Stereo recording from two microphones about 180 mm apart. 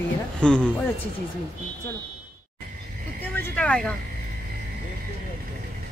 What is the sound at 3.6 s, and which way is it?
Speech, 5° left (ahead or behind).